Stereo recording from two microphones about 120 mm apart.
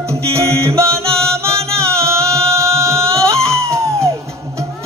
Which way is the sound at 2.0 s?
20° right (ahead or behind).